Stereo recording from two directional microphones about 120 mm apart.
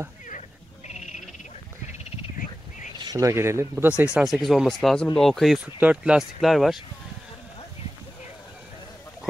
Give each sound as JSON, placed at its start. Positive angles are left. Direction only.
{"t": 0.8, "sound": "owl", "side_deg": 75}
{"t": 3.0, "sound": "speech", "side_deg": -30}
{"t": 4.0, "sound": "speech", "side_deg": -5}
{"t": 5.8, "sound": "speech", "side_deg": -10}